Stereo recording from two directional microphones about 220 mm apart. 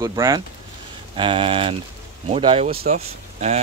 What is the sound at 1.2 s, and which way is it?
Speech, 25° right (ahead or behind).